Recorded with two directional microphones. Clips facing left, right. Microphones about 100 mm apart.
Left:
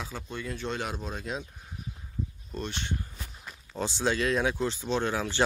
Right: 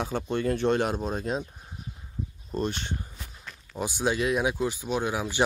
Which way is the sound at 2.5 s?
40° right (ahead or behind).